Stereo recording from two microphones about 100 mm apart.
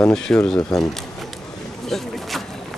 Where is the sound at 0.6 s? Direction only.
35° left (ahead or behind).